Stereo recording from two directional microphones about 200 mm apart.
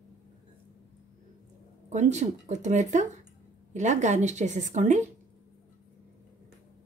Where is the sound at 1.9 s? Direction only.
35° right (ahead or behind).